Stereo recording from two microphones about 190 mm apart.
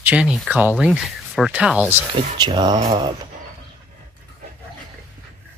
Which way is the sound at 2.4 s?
20° right (ahead or behind).